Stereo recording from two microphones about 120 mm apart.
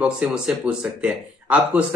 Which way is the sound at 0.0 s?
10° right (ahead or behind).